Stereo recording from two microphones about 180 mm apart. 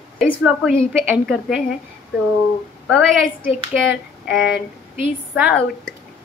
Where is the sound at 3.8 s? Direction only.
Centre (ahead or behind).